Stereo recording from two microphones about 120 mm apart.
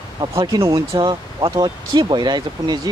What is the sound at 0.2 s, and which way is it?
Speech, 25° right (ahead or behind).